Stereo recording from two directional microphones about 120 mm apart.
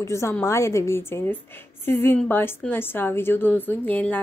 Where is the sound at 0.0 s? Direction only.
25° left (ahead or behind).